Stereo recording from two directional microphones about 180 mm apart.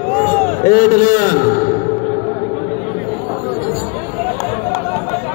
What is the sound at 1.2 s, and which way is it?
Music, 45° left (ahead or behind).